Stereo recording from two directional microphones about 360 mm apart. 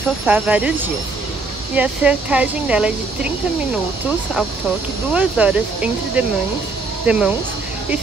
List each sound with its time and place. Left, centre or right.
0.3 s speech: centre
5.1 s speech: centre